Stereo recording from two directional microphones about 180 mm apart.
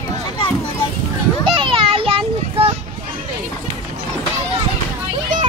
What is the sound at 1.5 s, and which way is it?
Child singing, 30° right (ahead or behind).